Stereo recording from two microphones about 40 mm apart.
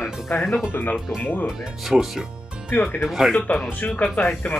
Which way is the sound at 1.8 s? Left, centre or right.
Centre.